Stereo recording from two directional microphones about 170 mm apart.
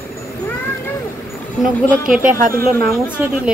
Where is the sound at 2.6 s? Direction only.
65° right (ahead or behind).